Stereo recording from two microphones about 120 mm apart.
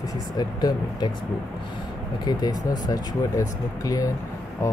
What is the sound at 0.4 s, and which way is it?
Speech, 35° left (ahead or behind).